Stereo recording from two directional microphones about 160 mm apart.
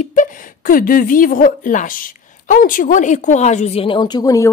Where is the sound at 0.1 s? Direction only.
60° left (ahead or behind).